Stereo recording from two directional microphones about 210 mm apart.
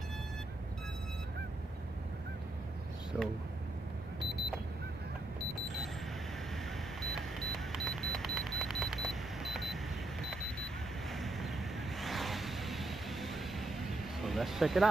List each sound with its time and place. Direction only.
3.1 s speech: 5° right (ahead or behind)
7.0 s a sound: centre (ahead or behind)
10.2 s alarm clock: centre (ahead or behind)
12.0 s vehicle: centre (ahead or behind)